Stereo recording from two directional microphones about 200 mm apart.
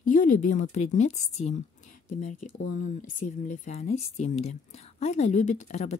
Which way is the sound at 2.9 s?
40° left (ahead or behind).